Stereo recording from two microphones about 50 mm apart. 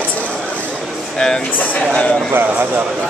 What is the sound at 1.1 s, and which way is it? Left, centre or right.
Speech, centre.